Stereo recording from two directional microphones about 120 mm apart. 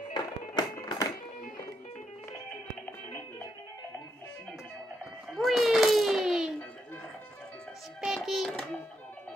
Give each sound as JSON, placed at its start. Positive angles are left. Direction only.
{"t": 0.1, "sound": "music", "side_deg": 35}
{"t": 3.1, "sound": "music", "side_deg": 15}
{"t": 5.3, "sound": "a sound", "side_deg": 0}
{"t": 8.0, "sound": "music", "side_deg": 0}